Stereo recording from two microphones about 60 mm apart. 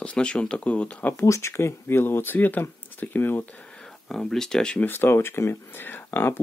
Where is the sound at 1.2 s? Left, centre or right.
Left.